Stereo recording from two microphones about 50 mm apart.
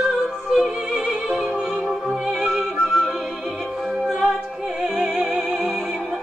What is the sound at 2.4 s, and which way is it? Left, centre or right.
Music, centre.